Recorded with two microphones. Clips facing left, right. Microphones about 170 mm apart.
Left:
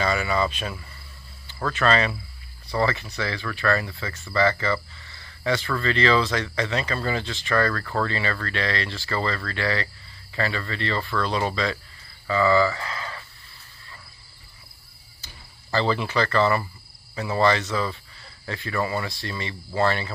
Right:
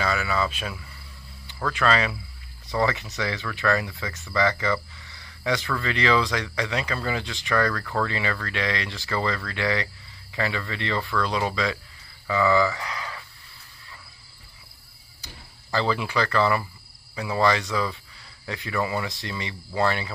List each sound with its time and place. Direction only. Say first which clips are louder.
0.0 s speech: left 2 dB; centre (ahead or behind)
2.7 s speech: even; 20° right (ahead or behind)
7.8 s speech: left 1 dB; centre (ahead or behind)
8.1 s speech: left 1 dB; 10° right (ahead or behind)
15.2 s speech: right 3 dB; 10° right (ahead or behind)